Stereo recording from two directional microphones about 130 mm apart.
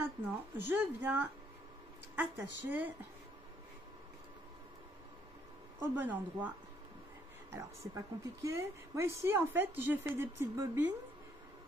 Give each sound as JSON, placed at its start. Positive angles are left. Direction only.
{"t": 0.6, "sound": "speech", "side_deg": -15}
{"t": 5.8, "sound": "speech", "side_deg": -15}
{"t": 7.5, "sound": "a woman's voice", "side_deg": -25}